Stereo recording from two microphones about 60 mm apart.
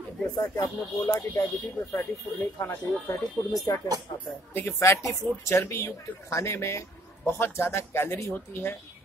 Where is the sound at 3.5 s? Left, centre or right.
Left.